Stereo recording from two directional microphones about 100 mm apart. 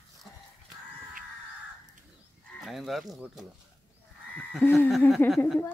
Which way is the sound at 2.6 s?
Centre (ahead or behind).